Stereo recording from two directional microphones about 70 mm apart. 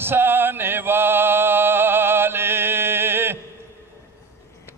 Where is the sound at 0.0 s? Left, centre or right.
Right.